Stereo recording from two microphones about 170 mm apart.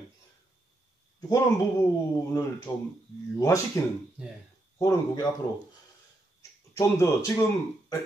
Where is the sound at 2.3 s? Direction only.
20° left (ahead or behind).